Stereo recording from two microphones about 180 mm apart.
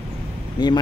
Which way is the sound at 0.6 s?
25° left (ahead or behind).